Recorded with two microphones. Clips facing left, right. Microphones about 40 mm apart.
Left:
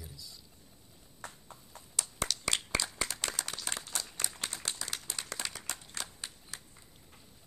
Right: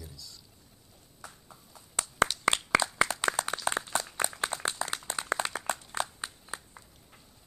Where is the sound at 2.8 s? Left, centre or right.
Right.